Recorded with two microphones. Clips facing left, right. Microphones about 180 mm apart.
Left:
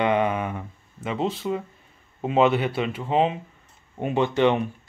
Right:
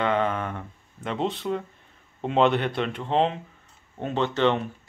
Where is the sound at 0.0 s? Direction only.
15° left (ahead or behind).